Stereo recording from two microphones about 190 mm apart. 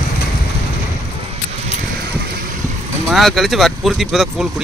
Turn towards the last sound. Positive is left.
turn(degrees=0)  # may be behind; listen again after turning